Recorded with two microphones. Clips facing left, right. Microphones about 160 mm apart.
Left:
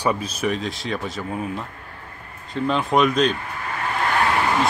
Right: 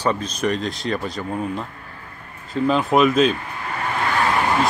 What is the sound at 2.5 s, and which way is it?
Speech, 5° right (ahead or behind).